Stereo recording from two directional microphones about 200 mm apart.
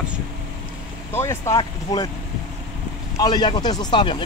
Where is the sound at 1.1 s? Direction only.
15° left (ahead or behind).